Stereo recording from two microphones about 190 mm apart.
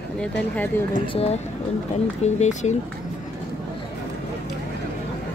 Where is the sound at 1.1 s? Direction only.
30° left (ahead or behind).